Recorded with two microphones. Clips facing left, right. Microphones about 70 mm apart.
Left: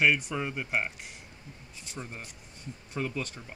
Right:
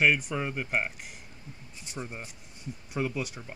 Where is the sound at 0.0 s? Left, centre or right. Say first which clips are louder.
Right 1 dB; centre.